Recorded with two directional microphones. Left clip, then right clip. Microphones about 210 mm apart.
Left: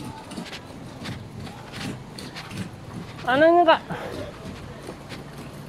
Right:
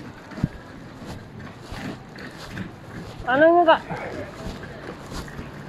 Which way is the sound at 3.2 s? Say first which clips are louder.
Right 1 dB; 45° left (ahead or behind).